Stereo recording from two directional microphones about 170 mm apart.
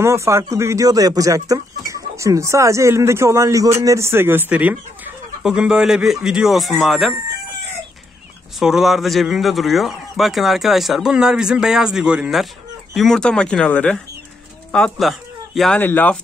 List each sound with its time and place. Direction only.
0.0 s speech: 15° right (ahead or behind); by 7.2 s centre (ahead or behind)
8.5 s a man's voice: centre (ahead or behind)